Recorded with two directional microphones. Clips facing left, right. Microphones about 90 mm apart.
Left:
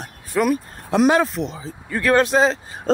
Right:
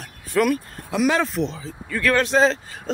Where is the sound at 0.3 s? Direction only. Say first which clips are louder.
Even; 20° left (ahead or behind).